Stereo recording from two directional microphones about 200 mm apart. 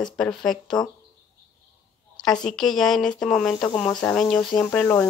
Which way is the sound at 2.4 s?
Centre (ahead or behind).